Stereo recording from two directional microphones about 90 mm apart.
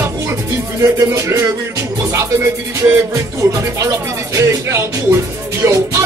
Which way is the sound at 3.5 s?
35° right (ahead or behind).